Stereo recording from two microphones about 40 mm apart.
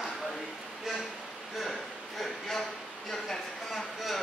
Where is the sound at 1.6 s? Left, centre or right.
Centre.